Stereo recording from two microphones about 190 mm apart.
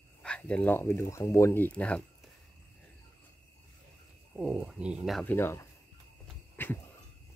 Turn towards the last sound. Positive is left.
turn(degrees=10)  # may be behind; listen again after turning